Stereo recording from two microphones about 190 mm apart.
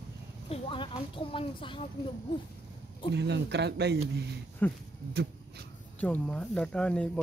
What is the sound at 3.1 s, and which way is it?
Speech, 65° right (ahead or behind).